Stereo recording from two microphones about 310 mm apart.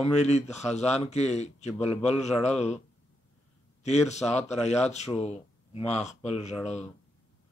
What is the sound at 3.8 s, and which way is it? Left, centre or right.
Speech, left.